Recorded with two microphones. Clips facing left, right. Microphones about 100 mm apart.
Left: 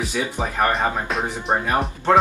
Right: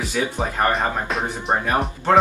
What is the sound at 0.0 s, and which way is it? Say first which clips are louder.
Speech: right 1 dB; centre (ahead or behind).